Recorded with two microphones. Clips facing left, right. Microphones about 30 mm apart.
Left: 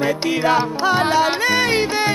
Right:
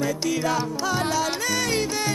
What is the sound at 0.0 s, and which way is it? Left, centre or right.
Music, left.